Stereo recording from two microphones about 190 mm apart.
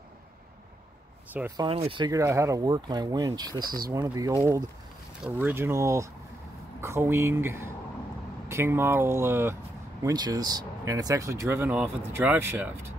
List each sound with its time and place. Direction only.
1.6 s speech: 30° right (ahead or behind); by 12.7 s 10° right (ahead or behind)